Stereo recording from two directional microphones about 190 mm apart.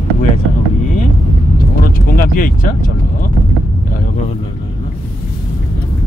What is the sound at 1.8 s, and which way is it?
Speech, 50° left (ahead or behind).